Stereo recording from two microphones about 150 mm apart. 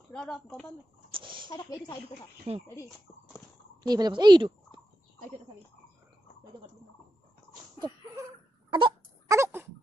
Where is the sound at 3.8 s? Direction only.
25° right (ahead or behind).